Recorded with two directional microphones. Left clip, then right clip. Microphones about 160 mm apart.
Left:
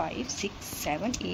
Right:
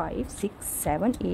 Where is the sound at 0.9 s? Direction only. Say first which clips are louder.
Right 4 dB; 40° right (ahead or behind).